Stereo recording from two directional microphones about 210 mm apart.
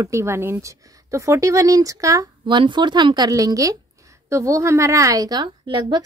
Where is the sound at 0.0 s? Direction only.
15° right (ahead or behind).